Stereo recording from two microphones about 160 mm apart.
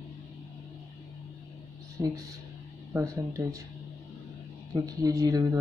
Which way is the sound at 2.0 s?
10° right (ahead or behind).